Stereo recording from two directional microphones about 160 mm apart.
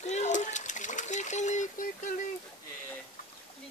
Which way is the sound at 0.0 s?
45° left (ahead or behind).